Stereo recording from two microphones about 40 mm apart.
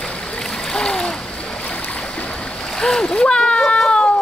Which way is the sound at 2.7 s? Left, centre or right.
Centre.